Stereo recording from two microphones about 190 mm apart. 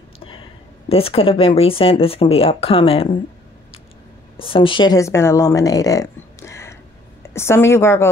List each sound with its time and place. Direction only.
0.8 s speech: 30° left (ahead or behind)
4.4 s speech: 30° left (ahead or behind)